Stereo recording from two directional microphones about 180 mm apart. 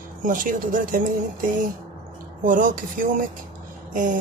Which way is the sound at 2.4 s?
50° right (ahead or behind).